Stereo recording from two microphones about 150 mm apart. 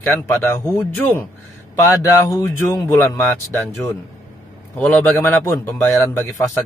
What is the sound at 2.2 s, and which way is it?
Speech, 20° left (ahead or behind).